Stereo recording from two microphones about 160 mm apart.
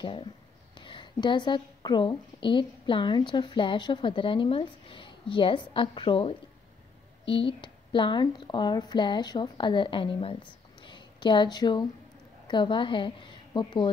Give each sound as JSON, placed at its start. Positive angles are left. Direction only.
{"t": 0.0, "sound": "a woman's voice", "side_deg": 30}
{"t": 10.8, "sound": "a sound", "side_deg": 30}
{"t": 12.4, "sound": "a woman's voice", "side_deg": 30}